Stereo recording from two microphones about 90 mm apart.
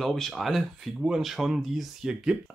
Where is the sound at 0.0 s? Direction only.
5° left (ahead or behind).